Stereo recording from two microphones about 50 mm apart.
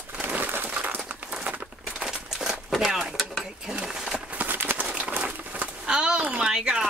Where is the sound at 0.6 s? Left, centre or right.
Right.